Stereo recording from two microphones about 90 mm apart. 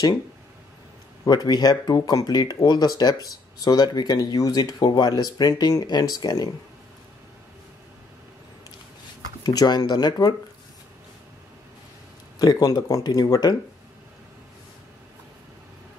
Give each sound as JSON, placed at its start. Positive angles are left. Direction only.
{"t": 1.2, "sound": "speech", "side_deg": 50}
{"t": 9.4, "sound": "speech", "side_deg": 50}
{"t": 12.4, "sound": "speech", "side_deg": 50}